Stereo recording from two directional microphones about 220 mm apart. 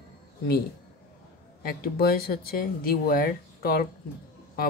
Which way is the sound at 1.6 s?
45° left (ahead or behind).